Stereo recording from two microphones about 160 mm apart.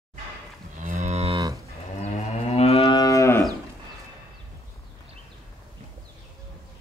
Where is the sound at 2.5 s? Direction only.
40° left (ahead or behind).